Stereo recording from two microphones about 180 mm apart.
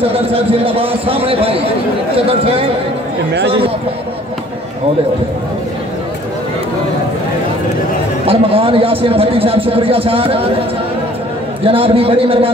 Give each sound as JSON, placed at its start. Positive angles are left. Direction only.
{"t": 0.0, "sound": "a man's voice", "side_deg": -30}
{"t": 8.3, "sound": "a man's voice", "side_deg": -30}
{"t": 11.6, "sound": "a man's voice", "side_deg": -30}